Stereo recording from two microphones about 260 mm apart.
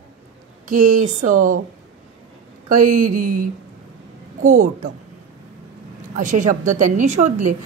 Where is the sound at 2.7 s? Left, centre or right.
Right.